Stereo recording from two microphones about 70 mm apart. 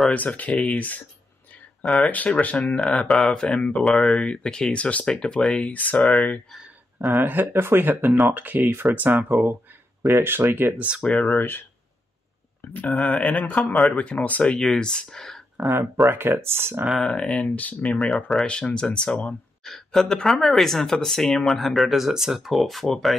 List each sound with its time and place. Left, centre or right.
0.1 s speech: left
1.8 s speech: centre
2.0 s speech: left
2.8 s speech: centre
7.2 s speech: right
11.0 s speech: centre
11.3 s speech: left
12.9 s speech: centre
13.2 s speech: left
14.5 s speech: centre
16.1 s speech: right
17.0 s speech: centre
17.8 s speech: centre
18.4 s speech: centre